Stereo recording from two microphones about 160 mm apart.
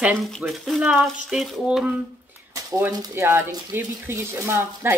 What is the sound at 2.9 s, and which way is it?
Speech, 20° right (ahead or behind).